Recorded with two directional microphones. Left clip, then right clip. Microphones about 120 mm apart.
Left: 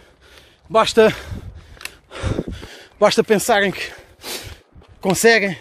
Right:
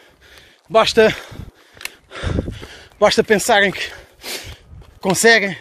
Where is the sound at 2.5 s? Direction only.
80° left.